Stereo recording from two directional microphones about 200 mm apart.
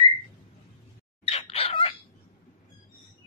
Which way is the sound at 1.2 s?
30° left (ahead or behind).